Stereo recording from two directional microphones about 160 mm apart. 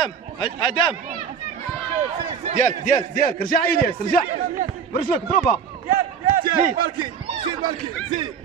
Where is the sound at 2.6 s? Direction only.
55° left (ahead or behind).